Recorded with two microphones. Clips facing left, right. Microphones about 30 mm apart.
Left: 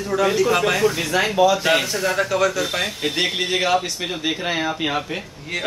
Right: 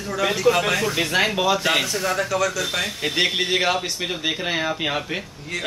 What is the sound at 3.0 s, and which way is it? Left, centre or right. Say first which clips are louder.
Speech: right 3 dB; centre.